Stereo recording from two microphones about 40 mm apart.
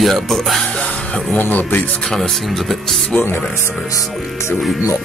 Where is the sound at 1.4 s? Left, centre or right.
Left.